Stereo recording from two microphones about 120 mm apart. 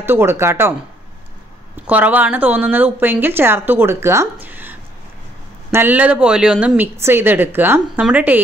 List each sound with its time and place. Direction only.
0.0 s speech: 20° right (ahead or behind)
1.9 s speech: 15° right (ahead or behind)
7.0 s speech: 20° right (ahead or behind)